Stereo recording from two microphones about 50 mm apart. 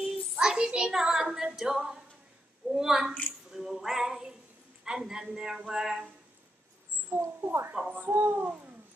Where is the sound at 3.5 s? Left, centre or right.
Centre.